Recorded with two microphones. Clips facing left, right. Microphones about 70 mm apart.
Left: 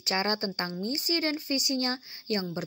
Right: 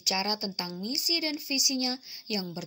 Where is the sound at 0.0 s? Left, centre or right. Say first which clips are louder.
Left 3 dB; left.